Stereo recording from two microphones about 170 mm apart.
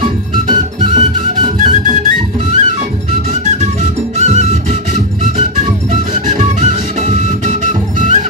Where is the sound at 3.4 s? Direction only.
45° right (ahead or behind).